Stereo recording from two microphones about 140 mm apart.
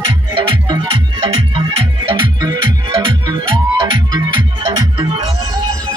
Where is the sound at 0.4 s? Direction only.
40° right (ahead or behind).